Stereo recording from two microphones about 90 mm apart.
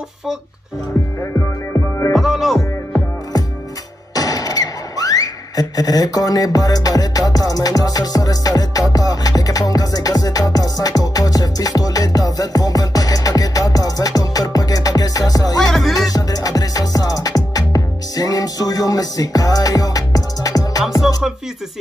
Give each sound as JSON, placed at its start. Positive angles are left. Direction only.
{"t": 1.3, "sound": "music", "side_deg": 30}
{"t": 2.1, "sound": "music", "side_deg": 0}
{"t": 4.1, "sound": "a sound", "side_deg": 45}
{"t": 15.6, "sound": "music", "side_deg": 5}
{"t": 16.1, "sound": "music", "side_deg": 45}